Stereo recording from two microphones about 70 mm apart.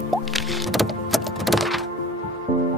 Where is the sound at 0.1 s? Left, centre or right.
Centre.